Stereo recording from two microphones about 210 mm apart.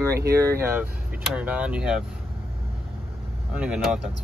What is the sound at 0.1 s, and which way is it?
Speech, 50° right (ahead or behind).